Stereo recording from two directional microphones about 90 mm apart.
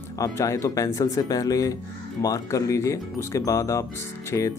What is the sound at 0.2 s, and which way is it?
Speech, 35° left (ahead or behind).